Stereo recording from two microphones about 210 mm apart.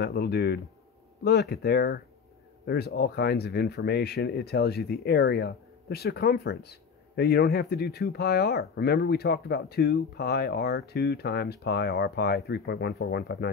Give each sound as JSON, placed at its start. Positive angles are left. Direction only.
{"t": 0.0, "sound": "speech", "side_deg": 50}